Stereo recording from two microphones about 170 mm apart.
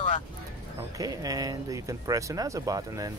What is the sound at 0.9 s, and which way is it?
Speech, 20° right (ahead or behind).